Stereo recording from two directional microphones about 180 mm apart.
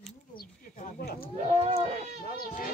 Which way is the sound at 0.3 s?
55° left (ahead or behind).